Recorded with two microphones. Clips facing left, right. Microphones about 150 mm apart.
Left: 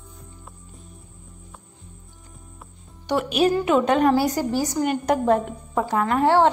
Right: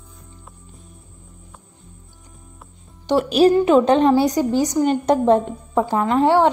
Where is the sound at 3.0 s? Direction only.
35° right (ahead or behind).